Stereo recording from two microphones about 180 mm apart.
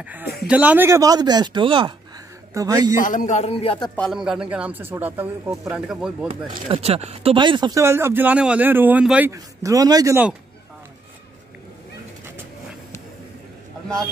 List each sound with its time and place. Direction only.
0.0 s chopping: 10° right (ahead or behind)
0.5 s speech: 10° right (ahead or behind)
3.0 s a man's voice: 45° left (ahead or behind); by 3.9 s 30° left (ahead or behind)
3.9 s speech: centre (ahead or behind)
6.4 s chopping: 30° right (ahead or behind); by 9.3 s 5° right (ahead or behind)
9.3 s speech: 20° right (ahead or behind)